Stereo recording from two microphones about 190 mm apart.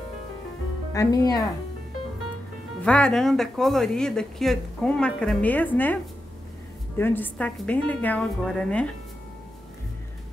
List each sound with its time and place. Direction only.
0.9 s speech: 20° left (ahead or behind)
2.8 s speech: 5° left (ahead or behind)
7.0 s a woman's voice: 10° left (ahead or behind)